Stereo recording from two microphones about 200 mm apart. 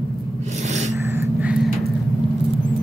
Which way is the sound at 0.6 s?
35° right (ahead or behind).